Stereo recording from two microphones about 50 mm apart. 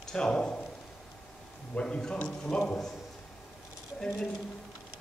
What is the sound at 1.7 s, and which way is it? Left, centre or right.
A man's voice, centre.